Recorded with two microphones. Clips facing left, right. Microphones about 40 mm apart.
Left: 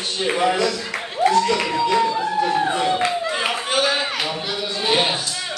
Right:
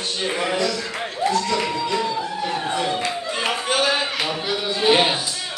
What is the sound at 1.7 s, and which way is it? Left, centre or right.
Speech, left.